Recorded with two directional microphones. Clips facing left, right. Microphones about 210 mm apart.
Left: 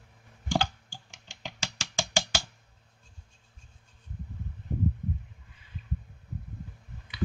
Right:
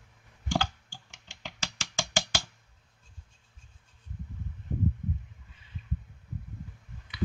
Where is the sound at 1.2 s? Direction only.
15° left (ahead or behind).